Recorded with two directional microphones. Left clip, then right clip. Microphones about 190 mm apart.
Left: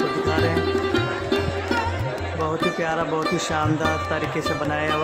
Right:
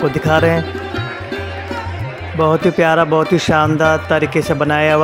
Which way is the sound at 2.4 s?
40° right (ahead or behind).